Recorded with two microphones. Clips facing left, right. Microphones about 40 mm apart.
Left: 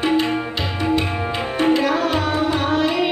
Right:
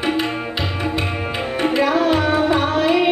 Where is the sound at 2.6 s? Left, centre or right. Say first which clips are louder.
Right 2 dB; centre.